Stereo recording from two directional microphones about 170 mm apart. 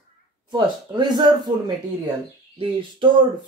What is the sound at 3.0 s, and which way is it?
Speech, 30° right (ahead or behind).